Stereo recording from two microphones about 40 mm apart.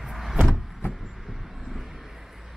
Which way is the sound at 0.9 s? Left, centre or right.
Centre.